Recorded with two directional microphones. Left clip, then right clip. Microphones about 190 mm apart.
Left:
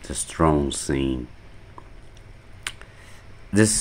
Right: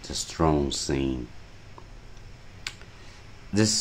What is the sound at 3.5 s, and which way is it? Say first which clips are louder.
Speech: left 5 dB; 20° left (ahead or behind).